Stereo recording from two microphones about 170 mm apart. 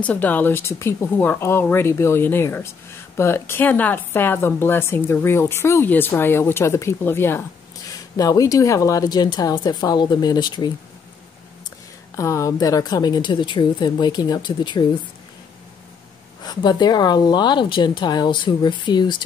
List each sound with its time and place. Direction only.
0.0 s a woman's voice: 10° left (ahead or behind); by 10.7 s 25° left (ahead or behind)
12.2 s a woman's voice: 20° left (ahead or behind)
16.4 s a woman's voice: 25° left (ahead or behind)